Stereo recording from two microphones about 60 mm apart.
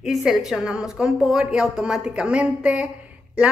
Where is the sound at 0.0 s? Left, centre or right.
Centre.